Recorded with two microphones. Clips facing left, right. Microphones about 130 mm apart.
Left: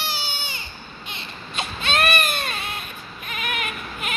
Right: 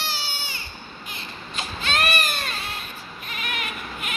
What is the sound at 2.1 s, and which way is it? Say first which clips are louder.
Baby cry: left 3 dB; 60° left (ahead or behind).